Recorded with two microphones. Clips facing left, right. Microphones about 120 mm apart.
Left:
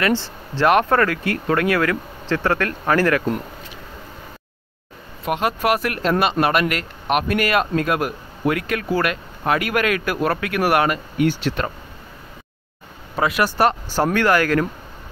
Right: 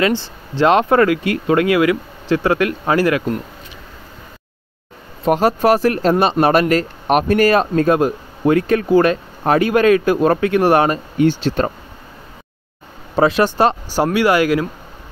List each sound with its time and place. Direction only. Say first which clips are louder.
0.2 s speech: right 3 dB; 20° right (ahead or behind)
5.2 s speech: right 7 dB; 35° right (ahead or behind)
13.1 s speech: right 6 dB; 30° right (ahead or behind); by 14.7 s 15° right (ahead or behind)